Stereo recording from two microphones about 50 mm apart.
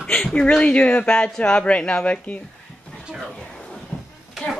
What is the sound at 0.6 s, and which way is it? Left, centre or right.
Speech, left.